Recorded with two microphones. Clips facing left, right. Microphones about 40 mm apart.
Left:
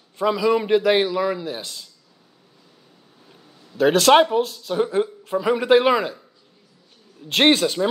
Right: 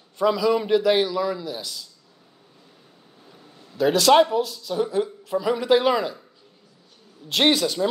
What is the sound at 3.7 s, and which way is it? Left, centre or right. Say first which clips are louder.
Speech: left 2 dB; left.